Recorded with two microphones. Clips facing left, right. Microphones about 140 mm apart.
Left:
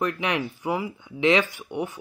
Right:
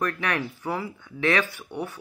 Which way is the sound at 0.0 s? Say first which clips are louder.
Left 2 dB; 15° left (ahead or behind).